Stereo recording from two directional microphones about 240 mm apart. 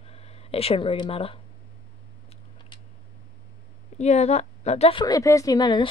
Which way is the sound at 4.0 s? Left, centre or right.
Left.